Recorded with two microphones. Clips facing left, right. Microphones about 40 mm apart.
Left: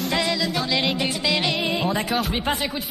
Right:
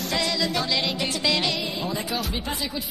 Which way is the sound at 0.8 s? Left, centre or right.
Left.